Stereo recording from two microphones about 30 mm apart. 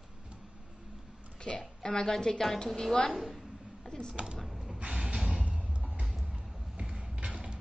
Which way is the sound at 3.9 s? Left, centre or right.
Left.